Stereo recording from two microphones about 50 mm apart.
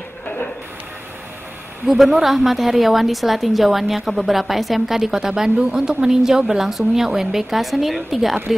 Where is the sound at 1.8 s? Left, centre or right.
Centre.